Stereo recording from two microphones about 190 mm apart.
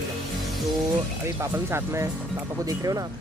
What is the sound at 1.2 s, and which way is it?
Speech, 15° right (ahead or behind).